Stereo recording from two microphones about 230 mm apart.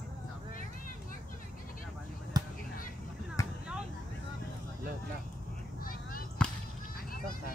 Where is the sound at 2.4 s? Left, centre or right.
Centre.